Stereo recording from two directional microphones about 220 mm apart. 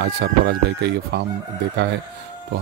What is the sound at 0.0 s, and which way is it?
Speech, 50° right (ahead or behind).